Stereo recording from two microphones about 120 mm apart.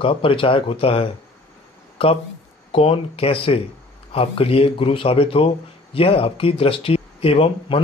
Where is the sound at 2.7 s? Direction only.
50° left (ahead or behind).